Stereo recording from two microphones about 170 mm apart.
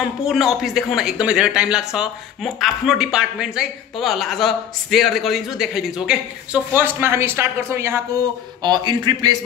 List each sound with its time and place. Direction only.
0.0 s speech: centre (ahead or behind)
8.6 s a man's voice: 25° right (ahead or behind)